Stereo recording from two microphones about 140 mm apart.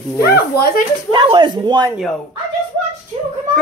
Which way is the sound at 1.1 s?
35° right (ahead or behind).